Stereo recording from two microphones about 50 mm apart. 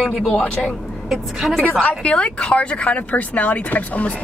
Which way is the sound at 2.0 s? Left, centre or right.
Centre.